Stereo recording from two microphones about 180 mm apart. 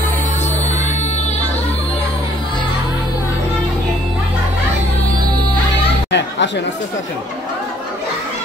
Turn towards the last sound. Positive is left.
turn(degrees=75)  # may be behind; listen again after turning